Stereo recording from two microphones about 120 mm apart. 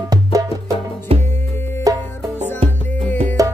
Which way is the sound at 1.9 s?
30° right (ahead or behind).